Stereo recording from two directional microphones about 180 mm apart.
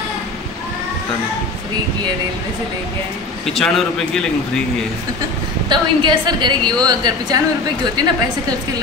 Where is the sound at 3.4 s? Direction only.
Centre (ahead or behind).